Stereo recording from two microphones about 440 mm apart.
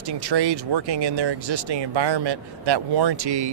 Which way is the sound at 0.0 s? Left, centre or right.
Right.